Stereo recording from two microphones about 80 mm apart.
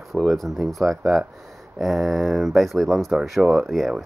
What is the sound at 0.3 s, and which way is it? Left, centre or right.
Speech, centre.